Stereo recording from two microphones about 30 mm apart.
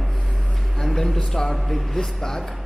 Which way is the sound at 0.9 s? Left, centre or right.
Centre.